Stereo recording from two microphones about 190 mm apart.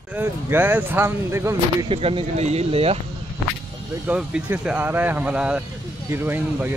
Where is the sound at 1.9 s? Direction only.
30° right (ahead or behind).